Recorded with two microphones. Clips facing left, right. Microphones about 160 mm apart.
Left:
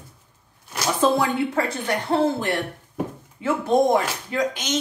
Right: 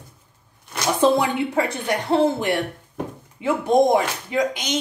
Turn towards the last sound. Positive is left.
turn(degrees=-15)  # may be behind; listen again after turning